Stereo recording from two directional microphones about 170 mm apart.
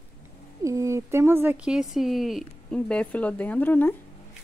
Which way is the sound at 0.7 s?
20° right (ahead or behind).